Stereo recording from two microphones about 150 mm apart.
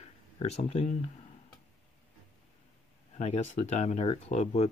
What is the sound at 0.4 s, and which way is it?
Speech, 45° left (ahead or behind).